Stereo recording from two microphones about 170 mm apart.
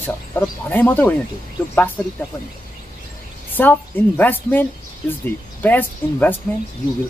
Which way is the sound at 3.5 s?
10° left (ahead or behind).